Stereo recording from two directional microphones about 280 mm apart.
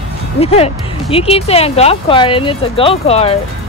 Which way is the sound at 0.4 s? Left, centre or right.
Left.